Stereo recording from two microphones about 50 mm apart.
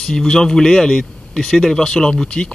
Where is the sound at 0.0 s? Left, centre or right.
Centre.